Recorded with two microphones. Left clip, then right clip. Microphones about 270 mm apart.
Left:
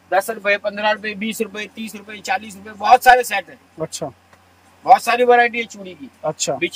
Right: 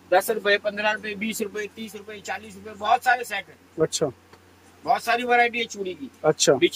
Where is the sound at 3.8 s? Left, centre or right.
Centre.